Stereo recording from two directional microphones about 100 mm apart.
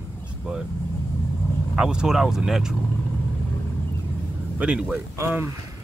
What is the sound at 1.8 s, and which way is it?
Speech, 5° right (ahead or behind).